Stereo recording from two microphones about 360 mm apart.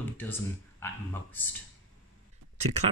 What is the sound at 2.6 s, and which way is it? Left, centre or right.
Speech, centre.